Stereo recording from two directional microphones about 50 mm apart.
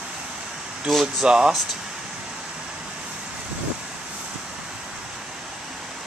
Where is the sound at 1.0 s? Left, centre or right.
Centre.